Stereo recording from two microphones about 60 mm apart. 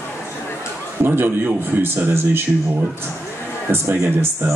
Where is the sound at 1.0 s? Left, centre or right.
Right.